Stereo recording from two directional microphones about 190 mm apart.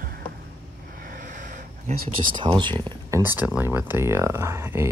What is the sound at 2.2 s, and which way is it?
Speech, 25° right (ahead or behind).